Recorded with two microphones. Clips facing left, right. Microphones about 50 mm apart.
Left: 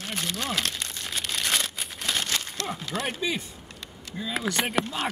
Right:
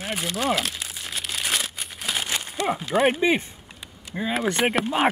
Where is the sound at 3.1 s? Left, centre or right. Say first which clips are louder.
Right 8 dB; right.